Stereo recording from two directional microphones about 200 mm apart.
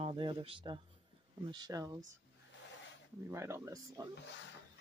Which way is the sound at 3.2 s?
15° right (ahead or behind).